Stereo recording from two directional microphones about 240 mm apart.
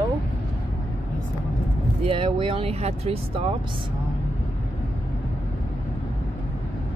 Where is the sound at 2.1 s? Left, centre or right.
Right.